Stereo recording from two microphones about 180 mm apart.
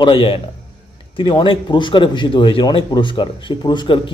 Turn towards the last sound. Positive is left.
turn(degrees=25)  # may be behind; listen again after turning